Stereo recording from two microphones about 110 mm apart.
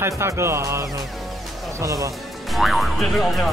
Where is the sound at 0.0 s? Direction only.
25° right (ahead or behind).